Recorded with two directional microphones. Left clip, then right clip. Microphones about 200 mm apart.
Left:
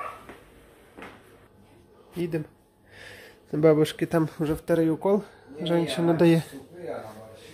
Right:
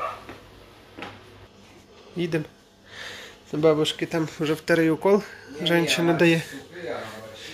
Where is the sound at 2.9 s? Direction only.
15° left (ahead or behind).